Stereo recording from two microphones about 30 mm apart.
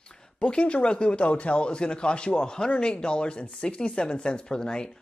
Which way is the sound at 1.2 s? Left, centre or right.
Left.